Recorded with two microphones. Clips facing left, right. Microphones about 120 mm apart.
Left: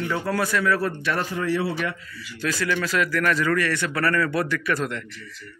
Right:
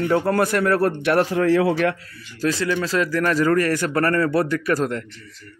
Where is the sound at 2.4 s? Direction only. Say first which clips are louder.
Right 4 dB; 30° right (ahead or behind).